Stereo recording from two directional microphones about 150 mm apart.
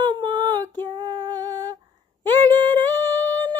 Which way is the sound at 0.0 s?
30° right (ahead or behind).